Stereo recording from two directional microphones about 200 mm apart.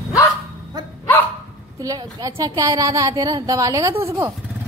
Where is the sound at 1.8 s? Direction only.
20° right (ahead or behind).